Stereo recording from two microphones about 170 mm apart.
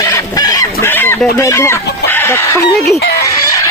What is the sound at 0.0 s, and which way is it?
Chicken, 20° left (ahead or behind).